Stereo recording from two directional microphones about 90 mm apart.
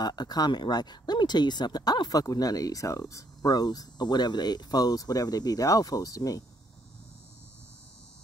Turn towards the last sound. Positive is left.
turn(degrees=40)  # may be behind; listen again after turning